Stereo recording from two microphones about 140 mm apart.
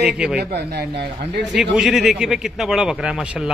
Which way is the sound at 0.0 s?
5° right (ahead or behind).